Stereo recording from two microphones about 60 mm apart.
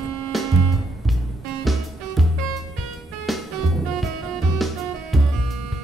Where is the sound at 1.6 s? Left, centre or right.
Centre.